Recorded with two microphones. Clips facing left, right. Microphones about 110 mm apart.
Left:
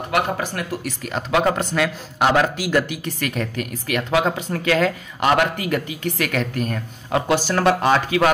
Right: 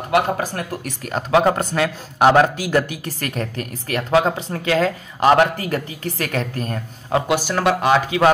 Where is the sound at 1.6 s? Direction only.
45° right (ahead or behind); by 7.2 s 30° right (ahead or behind).